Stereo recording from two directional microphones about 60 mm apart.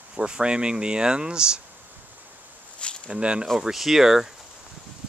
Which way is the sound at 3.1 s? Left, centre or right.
Centre.